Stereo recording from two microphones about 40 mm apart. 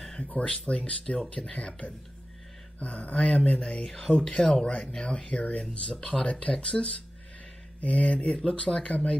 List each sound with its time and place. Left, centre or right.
0.2 s speech: left
2.8 s speech: left
3.3 s speech: left